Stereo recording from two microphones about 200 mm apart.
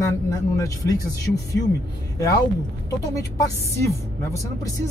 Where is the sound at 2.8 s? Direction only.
15° left (ahead or behind).